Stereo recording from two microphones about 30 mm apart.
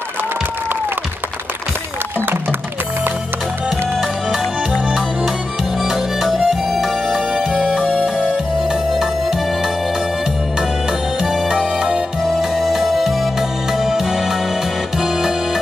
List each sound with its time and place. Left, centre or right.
5.8 s music: centre
7.2 s music: right
8.9 s music: centre
11.4 s music: right
12.4 s music: centre